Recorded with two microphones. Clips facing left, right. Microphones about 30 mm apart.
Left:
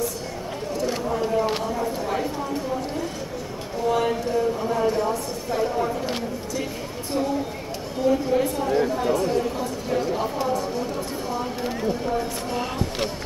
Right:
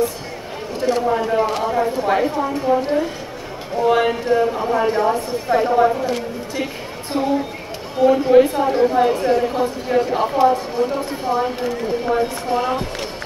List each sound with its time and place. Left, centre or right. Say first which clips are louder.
1.0 s a woman's voice: right 5 dB; right
12.5 s speech: right 8 dB; right